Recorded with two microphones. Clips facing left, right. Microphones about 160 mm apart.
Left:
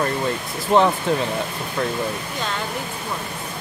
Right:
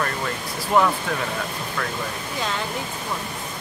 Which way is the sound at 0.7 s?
25° left (ahead or behind).